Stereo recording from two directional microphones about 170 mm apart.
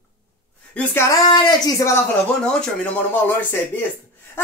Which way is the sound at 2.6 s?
10° left (ahead or behind).